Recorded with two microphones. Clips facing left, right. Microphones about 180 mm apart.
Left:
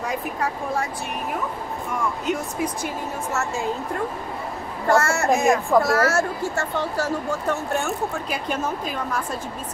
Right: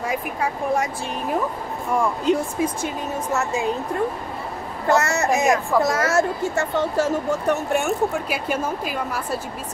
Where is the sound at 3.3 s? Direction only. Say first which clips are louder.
Right 3 dB; 15° right (ahead or behind).